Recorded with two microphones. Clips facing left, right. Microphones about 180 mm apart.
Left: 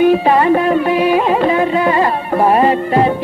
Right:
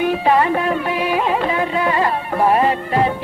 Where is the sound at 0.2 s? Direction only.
35° left (ahead or behind).